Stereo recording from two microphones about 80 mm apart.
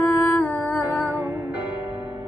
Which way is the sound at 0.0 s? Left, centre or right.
Left.